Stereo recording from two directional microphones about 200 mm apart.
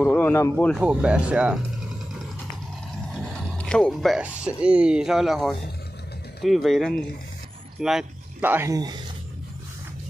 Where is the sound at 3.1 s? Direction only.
5° left (ahead or behind); by 9.0 s 20° right (ahead or behind).